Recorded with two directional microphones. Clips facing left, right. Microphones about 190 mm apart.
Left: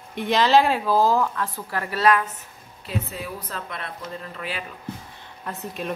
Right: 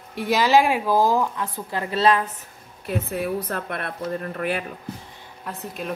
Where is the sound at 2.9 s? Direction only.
60° right (ahead or behind).